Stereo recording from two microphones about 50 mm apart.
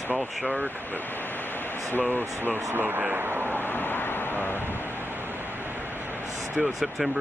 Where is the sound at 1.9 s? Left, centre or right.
Left.